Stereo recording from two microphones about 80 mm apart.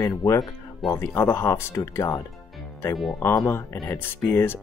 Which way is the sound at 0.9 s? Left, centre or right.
Left.